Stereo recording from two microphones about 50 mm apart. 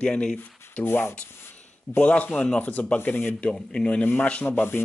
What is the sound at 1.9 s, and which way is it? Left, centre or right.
Speech, left.